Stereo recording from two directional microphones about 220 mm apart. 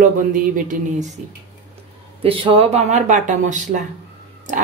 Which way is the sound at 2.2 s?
25° right (ahead or behind).